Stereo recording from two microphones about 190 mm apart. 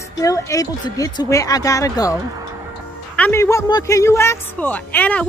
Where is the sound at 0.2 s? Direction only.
15° left (ahead or behind).